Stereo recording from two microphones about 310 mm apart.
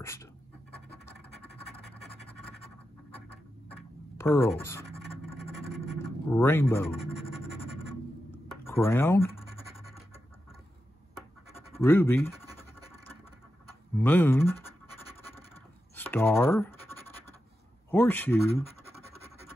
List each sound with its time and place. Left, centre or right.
0.0 s speech: centre
3.7 s scratch: centre
5.9 s speech: centre
8.3 s a sound: centre
11.5 s scratch: centre
13.9 s scratch: centre
17.9 s speech: centre